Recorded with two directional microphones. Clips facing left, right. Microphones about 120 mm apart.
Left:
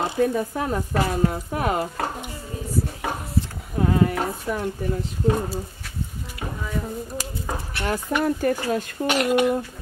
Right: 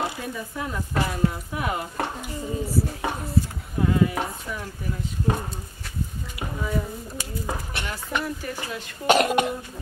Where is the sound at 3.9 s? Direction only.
45° left (ahead or behind).